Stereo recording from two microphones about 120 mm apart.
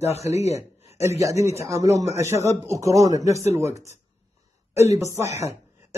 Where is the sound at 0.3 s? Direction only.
65° left (ahead or behind).